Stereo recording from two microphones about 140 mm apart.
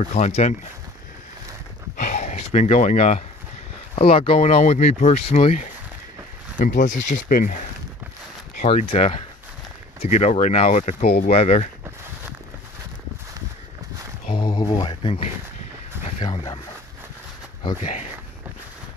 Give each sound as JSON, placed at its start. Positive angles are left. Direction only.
{"t": 0.0, "sound": "speech", "side_deg": 50}
{"t": 2.0, "sound": "a sound", "side_deg": 70}
{"t": 2.3, "sound": "speech", "side_deg": 55}
{"t": 3.9, "sound": "speech", "side_deg": 45}
{"t": 6.6, "sound": "speech", "side_deg": 70}
{"t": 8.8, "sound": "speech", "side_deg": 45}
{"t": 14.3, "sound": "a sound", "side_deg": 30}
{"t": 14.6, "sound": "a sound", "side_deg": 45}
{"t": 17.7, "sound": "speech", "side_deg": 55}